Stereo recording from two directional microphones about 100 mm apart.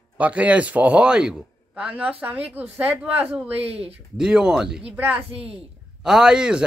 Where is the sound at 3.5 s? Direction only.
85° right.